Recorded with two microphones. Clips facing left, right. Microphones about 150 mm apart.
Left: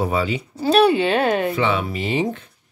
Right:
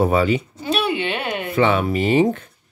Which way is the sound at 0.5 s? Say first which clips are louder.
Left 7 dB; 35° left (ahead or behind).